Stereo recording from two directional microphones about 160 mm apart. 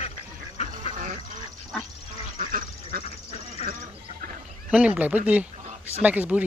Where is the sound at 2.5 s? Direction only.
70° right (ahead or behind).